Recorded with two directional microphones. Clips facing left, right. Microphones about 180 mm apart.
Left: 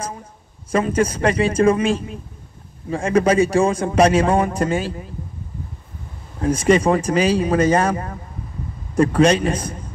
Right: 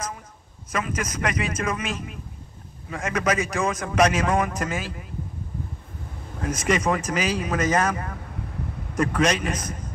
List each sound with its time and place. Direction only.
0.7 s a man's voice: 30° left (ahead or behind)
6.4 s a man's voice: 30° left (ahead or behind)